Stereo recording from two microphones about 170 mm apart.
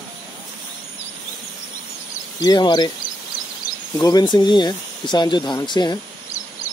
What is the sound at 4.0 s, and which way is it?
Speech, 20° left (ahead or behind).